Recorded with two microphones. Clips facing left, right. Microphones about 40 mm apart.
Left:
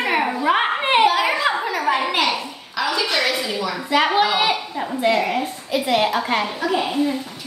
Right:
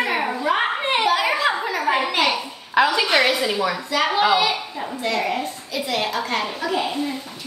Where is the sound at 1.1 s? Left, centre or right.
Centre.